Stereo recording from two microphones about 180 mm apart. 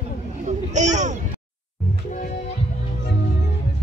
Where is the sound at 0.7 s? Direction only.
40° right (ahead or behind).